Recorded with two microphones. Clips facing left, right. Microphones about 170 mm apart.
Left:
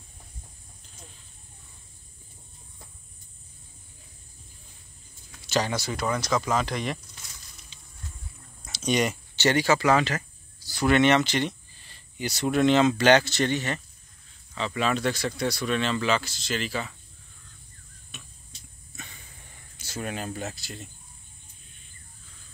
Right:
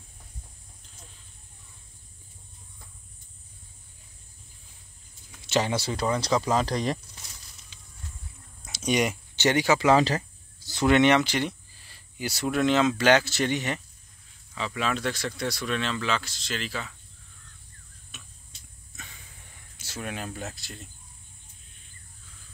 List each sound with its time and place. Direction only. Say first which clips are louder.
5.5 s speech: right 1 dB; 25° right (ahead or behind)
8.7 s speech: even; 10° right (ahead or behind)
9.9 s speech: right 3 dB; 30° right (ahead or behind)
10.7 s speech: right 1 dB; 20° right (ahead or behind)
14.5 s speech: left 3 dB; centre (ahead or behind)
18.1 s stir: left 2 dB; centre (ahead or behind)
18.9 s a sound: left 3 dB; centre (ahead or behind)
19.8 s speech: left 2 dB; centre (ahead or behind)